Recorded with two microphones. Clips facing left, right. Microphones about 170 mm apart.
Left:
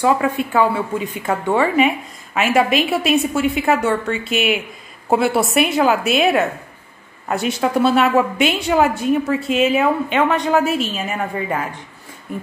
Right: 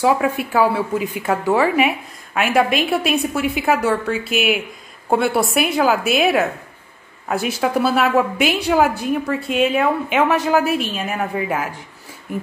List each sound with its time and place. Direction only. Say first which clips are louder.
0.0 s a woman's voice: even; 10° right (ahead or behind)